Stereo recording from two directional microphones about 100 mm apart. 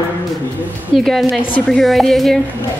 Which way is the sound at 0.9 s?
Centre (ahead or behind).